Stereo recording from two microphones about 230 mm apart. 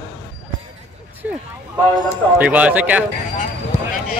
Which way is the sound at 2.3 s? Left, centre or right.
Centre.